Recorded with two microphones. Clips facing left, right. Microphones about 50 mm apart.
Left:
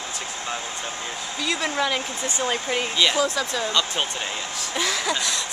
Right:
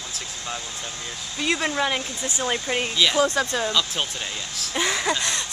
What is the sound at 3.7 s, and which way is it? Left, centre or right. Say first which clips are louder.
Speech: left 1 dB; centre.